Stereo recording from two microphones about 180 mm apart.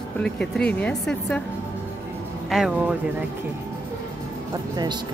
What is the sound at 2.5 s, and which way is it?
Speech, 5° right (ahead or behind).